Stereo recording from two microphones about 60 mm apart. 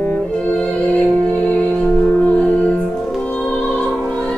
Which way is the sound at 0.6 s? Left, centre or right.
Centre.